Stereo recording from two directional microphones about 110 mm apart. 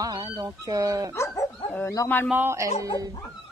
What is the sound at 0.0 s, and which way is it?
Fowl, 40° right (ahead or behind).